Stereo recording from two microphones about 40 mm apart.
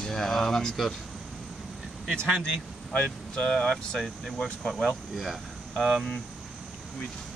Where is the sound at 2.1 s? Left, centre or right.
Left.